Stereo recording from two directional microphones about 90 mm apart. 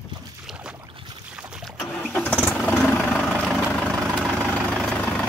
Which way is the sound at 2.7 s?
15° left (ahead or behind).